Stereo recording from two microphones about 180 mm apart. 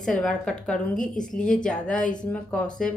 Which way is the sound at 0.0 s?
5° left (ahead or behind).